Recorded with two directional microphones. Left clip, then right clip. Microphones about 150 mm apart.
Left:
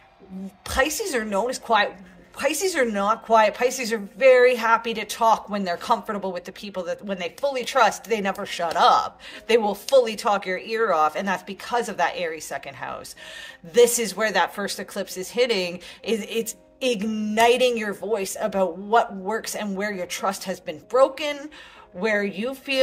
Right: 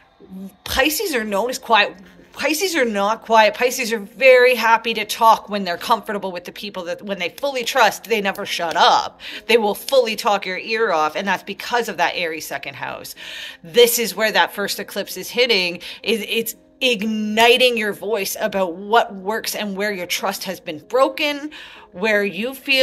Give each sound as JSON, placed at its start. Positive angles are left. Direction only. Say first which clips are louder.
{"t": 0.7, "sound": "speech", "louder": "right 4 dB", "side_deg": 0}